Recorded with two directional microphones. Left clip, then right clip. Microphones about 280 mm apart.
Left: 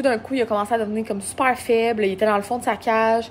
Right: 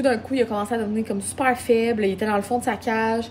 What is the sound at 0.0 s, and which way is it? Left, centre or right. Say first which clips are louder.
A woman's voice: even; centre.